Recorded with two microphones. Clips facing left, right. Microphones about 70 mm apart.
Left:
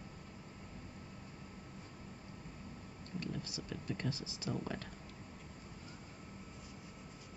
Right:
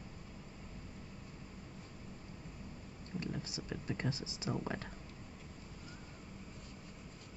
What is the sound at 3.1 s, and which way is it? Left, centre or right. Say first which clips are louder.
Speech: right 1 dB; right.